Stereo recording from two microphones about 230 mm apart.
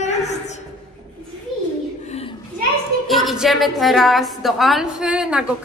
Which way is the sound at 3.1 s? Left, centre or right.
Centre.